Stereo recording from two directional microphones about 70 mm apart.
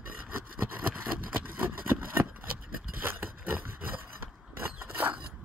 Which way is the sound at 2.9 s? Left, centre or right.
Right.